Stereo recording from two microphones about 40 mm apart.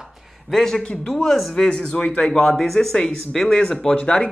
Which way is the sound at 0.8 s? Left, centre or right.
Left.